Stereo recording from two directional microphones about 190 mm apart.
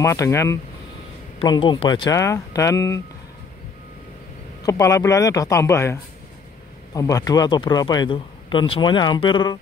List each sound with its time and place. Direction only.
0.0 s speech: 15° left (ahead or behind)
4.6 s a man's voice: 15° left (ahead or behind)